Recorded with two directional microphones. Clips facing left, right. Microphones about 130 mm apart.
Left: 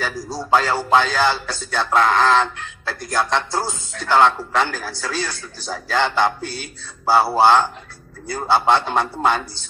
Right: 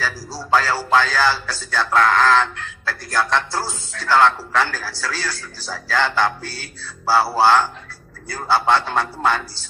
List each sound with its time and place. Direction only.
0.0 s speech: 20° left (ahead or behind)